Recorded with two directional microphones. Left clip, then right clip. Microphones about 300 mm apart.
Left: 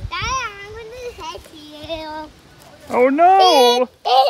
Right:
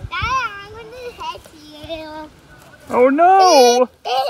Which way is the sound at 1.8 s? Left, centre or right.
Centre.